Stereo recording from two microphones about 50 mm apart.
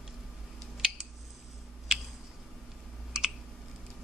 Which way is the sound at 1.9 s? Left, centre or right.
Centre.